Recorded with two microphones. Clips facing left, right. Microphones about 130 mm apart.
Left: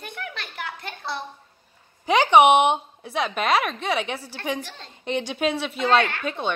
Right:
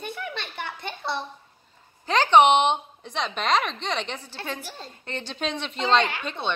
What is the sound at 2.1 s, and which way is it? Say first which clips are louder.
A woman's voice: left 2 dB; 10° left (ahead or behind).